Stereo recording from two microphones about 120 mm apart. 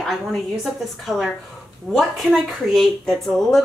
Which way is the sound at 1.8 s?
Centre (ahead or behind).